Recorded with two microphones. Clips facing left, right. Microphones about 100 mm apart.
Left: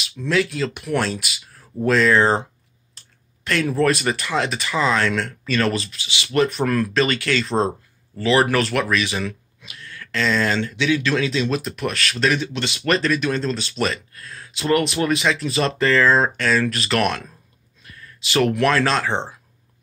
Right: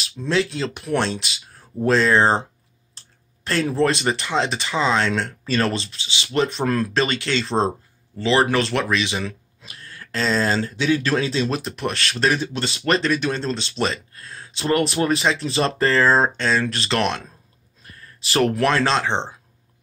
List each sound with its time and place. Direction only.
0.0 s speech: 30° right (ahead or behind)
3.4 s speech: 30° right (ahead or behind)
9.6 s speech: 35° right (ahead or behind)